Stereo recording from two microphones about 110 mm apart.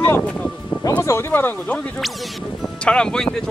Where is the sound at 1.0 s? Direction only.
25° left (ahead or behind).